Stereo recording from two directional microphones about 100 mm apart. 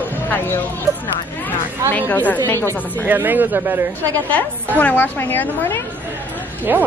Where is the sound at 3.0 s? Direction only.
20° right (ahead or behind).